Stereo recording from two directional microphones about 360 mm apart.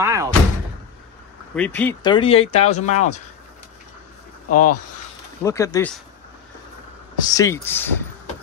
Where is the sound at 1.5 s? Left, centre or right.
Centre.